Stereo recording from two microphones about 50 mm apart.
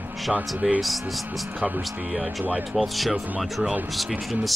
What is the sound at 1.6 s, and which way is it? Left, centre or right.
Speech, right.